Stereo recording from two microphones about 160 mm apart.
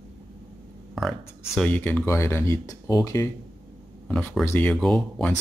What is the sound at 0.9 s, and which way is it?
Speech, centre (ahead or behind).